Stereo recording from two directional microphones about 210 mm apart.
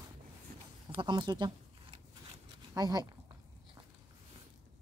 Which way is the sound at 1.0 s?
20° right (ahead or behind).